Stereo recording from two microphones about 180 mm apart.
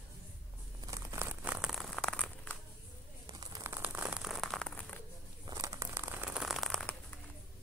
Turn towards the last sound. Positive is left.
turn(degrees=0)  # may be behind; listen again after turning